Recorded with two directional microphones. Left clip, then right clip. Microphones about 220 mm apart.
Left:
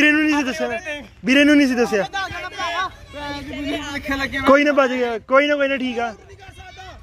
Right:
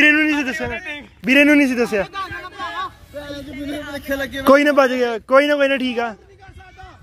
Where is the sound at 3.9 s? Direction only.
10° right (ahead or behind).